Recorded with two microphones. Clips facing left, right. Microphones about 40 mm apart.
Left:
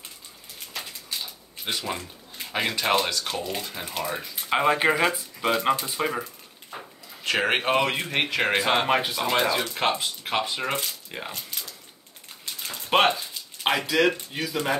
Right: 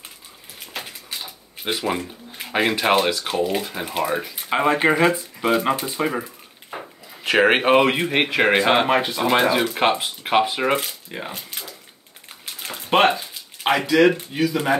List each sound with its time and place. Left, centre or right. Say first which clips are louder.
1.7 s speech: right 6 dB; right
4.5 s speech: right 3 dB; centre
6.7 s a sound: right 5 dB; right
7.2 s speech: right 7 dB; right
8.8 s speech: right 4 dB; centre
11.1 s a sound: right 3 dB; centre
12.9 s speech: right 4 dB; centre
14.3 s speech: right 8 dB; centre